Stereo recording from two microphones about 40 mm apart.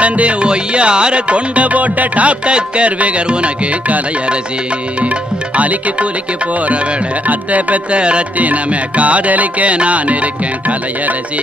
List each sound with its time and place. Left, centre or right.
0.0 s music: right
5.6 s music: right
7.2 s music: right
8.0 s music: right
8.4 s music: right